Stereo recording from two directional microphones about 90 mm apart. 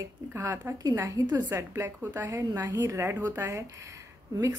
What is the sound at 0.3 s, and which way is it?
A woman's voice, 30° right (ahead or behind).